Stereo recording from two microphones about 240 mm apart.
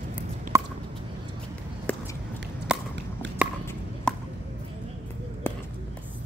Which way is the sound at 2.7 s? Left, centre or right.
Centre.